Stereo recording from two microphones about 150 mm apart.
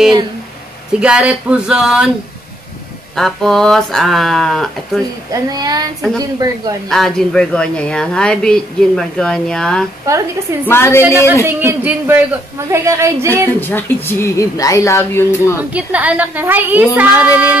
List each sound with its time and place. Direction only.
0.9 s speech: 5° right (ahead or behind)
3.2 s speech: centre (ahead or behind)
5.3 s a woman's voice: 25° right (ahead or behind)
6.9 s speech: centre (ahead or behind)
10.6 s a woman's voice: 15° left (ahead or behind)
11.4 s a woman's voice: 15° right (ahead or behind)
13.6 s a woman's voice: 15° left (ahead or behind)
15.7 s a woman's voice: 10° right (ahead or behind)